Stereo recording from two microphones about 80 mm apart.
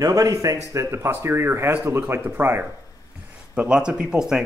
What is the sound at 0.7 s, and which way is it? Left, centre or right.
Speech, right.